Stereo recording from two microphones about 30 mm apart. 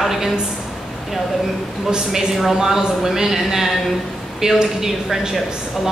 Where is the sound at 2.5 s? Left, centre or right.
Centre.